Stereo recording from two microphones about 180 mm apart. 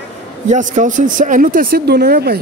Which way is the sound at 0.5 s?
45° right (ahead or behind).